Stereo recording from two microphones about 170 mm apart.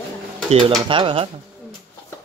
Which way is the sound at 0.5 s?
35° right (ahead or behind).